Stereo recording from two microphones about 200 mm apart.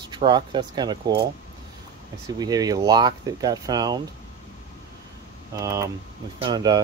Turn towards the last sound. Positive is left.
turn(degrees=-20)  # may be behind; listen again after turning